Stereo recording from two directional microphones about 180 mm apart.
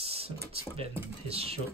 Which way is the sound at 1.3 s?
35° right (ahead or behind).